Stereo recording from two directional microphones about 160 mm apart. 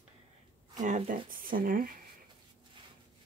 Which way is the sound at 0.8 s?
55° right (ahead or behind).